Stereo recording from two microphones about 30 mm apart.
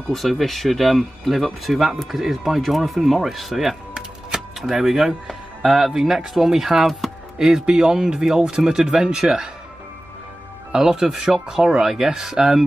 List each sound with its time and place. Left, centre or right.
0.1 s speech: centre; by 9.5 s right
10.8 s speech: centre